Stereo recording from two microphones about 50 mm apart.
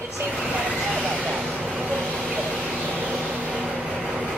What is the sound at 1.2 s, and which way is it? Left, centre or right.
Vehicle, right.